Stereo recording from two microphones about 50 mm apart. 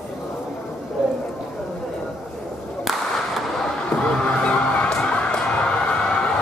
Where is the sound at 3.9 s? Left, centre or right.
Centre.